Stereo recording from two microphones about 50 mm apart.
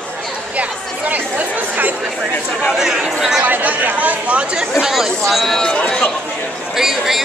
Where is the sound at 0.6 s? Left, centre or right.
Right.